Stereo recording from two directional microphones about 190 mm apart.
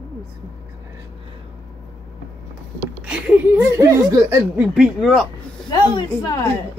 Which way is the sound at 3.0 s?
5° right (ahead or behind).